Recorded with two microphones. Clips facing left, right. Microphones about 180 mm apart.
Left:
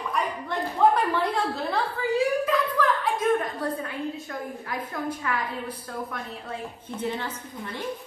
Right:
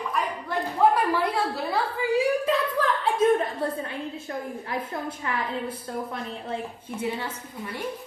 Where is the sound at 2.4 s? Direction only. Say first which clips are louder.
Even; 30° right (ahead or behind).